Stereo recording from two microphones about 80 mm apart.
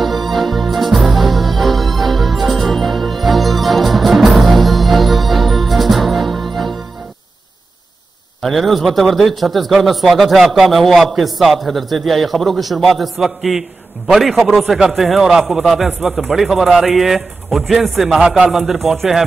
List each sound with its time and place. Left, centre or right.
0.0 s music: centre
8.4 s a man's voice: centre